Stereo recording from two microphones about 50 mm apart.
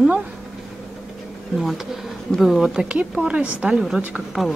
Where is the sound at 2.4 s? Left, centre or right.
Centre.